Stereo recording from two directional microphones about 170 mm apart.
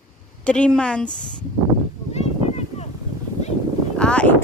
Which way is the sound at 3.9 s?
5° left (ahead or behind).